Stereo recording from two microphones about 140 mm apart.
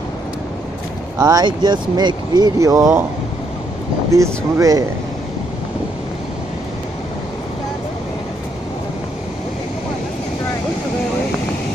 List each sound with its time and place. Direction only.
1.1 s speech: 25° right (ahead or behind)
4.1 s speech: 25° right (ahead or behind)